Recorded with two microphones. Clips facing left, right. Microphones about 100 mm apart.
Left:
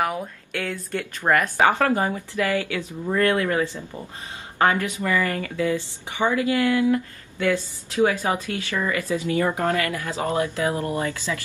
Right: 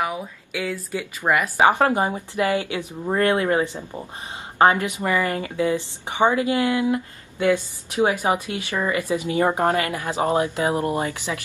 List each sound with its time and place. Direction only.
0.0 s a woman's voice: centre (ahead or behind); by 11.4 s 20° right (ahead or behind)